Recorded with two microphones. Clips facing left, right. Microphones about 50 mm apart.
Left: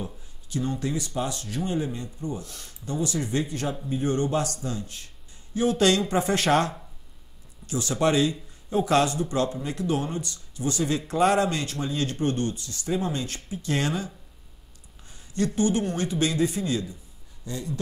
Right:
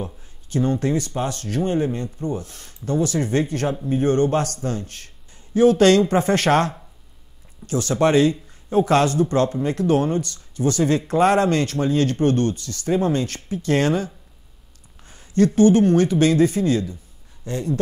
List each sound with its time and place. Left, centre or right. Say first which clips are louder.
0.0 s speech: right 5 dB; right
2.8 s speech: right 7 dB; right